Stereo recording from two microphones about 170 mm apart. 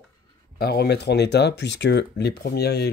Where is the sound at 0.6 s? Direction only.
70° left (ahead or behind).